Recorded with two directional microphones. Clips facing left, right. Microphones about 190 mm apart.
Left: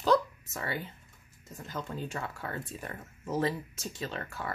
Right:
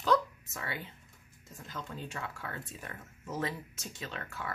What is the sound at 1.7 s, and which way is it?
Speech, 40° left (ahead or behind).